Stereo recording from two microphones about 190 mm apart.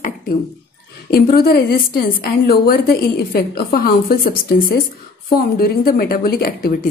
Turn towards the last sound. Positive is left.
turn(degrees=50)  # may be behind; listen again after turning